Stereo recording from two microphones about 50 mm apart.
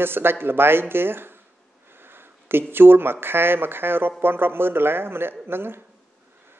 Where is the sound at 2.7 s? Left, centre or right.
Right.